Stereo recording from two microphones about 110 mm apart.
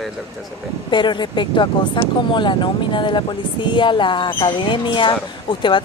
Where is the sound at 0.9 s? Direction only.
45° left (ahead or behind).